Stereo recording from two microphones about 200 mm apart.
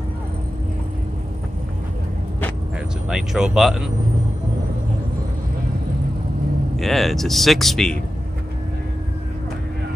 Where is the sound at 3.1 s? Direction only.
Centre (ahead or behind).